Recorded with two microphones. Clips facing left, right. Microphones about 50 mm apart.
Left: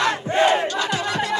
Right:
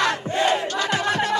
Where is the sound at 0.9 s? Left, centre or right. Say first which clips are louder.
Right 1 dB; right.